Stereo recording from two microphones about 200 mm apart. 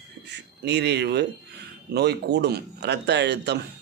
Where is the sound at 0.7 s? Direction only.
55° right (ahead or behind).